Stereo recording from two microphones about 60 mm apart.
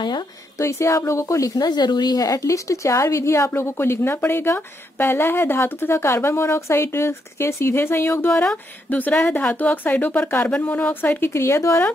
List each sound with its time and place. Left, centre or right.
0.6 s a woman's voice: left
2.1 s a woman's voice: left
8.9 s speech: left
10.2 s speech: left